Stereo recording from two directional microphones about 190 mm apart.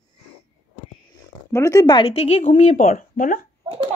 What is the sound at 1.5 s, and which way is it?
Speech, 15° left (ahead or behind).